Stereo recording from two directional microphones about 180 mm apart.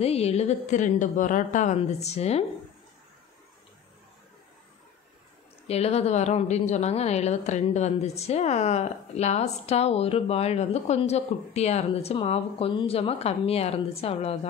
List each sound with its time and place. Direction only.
0.0 s a woman's voice: 35° left (ahead or behind)
5.7 s a woman's voice: 35° left (ahead or behind)